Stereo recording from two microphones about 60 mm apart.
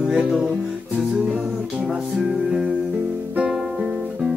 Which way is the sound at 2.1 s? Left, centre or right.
Centre.